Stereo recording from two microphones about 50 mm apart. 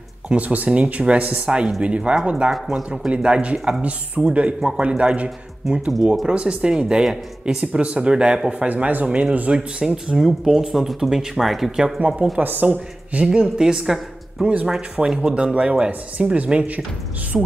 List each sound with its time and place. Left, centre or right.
0.3 s speech: right
3.8 s speech: right
9.5 s speech: centre
12.4 s a woman's voice: right
12.6 s speech: right
13.3 s speech: centre
14.4 s speech: right